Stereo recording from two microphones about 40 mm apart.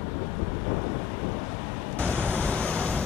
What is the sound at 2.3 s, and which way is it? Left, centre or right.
Vehicle, left.